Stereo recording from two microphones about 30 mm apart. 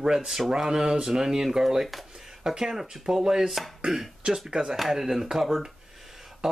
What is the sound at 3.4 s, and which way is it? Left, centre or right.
Chopping, centre.